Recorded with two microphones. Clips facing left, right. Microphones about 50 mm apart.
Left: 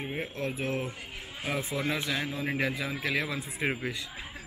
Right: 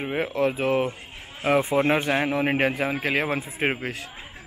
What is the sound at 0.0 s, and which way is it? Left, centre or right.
Speech, right.